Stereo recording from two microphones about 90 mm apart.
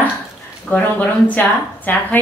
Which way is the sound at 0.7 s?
20° left (ahead or behind).